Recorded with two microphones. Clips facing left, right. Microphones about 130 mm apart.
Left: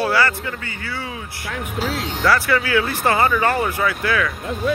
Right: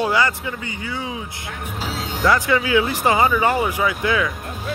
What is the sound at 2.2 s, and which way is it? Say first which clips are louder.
Speech: right 1 dB; 20° right (ahead or behind).